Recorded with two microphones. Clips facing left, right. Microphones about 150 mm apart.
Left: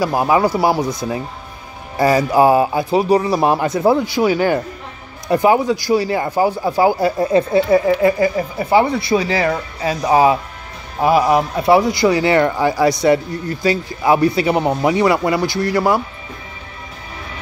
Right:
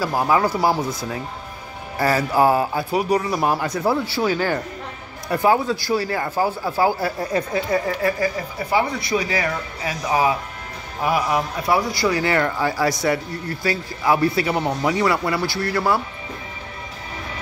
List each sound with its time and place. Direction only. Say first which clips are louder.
0.0 s a man's voice: left 4 dB; 20° left (ahead or behind)